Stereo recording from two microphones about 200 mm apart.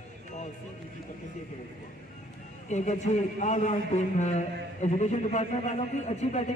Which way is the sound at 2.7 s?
35° left (ahead or behind).